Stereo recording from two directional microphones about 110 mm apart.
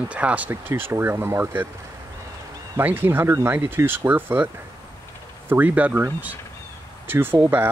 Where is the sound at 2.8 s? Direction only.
20° right (ahead or behind).